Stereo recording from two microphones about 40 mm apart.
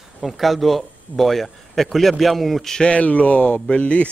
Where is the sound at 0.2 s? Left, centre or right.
Centre.